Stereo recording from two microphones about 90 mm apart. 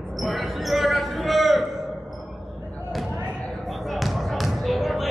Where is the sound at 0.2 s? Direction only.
Centre (ahead or behind).